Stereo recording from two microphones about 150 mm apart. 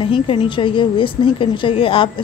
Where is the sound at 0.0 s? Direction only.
35° left (ahead or behind).